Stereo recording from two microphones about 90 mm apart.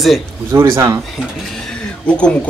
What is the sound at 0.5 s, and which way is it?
Speech, 35° right (ahead or behind).